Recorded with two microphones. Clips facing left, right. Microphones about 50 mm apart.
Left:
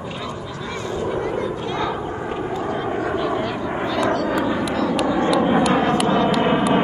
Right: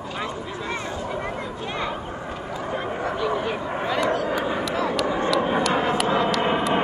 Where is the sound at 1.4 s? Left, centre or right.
Centre.